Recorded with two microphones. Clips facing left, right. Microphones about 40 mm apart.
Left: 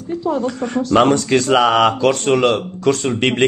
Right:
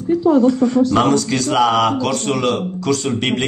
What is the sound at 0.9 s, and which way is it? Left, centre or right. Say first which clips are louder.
A man's voice: left 2 dB; left.